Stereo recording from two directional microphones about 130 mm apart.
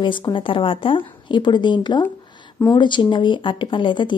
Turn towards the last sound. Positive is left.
turn(degrees=40)  # may be behind; listen again after turning